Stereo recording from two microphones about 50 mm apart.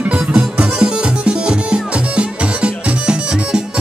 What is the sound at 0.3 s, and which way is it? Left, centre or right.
Music, right.